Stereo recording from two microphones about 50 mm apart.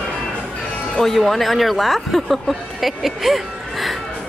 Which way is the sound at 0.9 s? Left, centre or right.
Centre.